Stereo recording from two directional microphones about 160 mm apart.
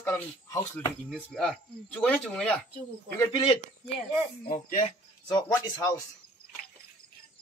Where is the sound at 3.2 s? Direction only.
30° left (ahead or behind).